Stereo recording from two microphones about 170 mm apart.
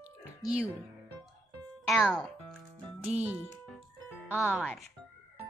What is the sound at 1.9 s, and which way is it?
Music, centre (ahead or behind).